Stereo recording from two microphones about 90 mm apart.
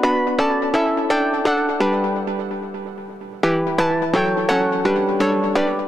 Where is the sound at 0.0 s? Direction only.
Centre (ahead or behind).